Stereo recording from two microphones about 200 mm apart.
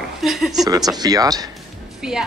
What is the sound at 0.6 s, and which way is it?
Speech, 20° right (ahead or behind).